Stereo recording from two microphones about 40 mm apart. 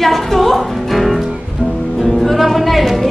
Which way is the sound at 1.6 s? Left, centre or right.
Left.